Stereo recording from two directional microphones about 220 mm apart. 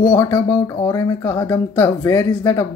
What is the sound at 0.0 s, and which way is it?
Speech, 15° left (ahead or behind).